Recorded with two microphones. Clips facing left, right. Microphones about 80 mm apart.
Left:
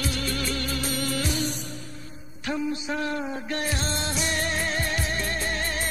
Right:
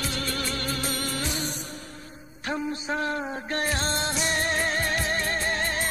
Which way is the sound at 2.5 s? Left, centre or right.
Right.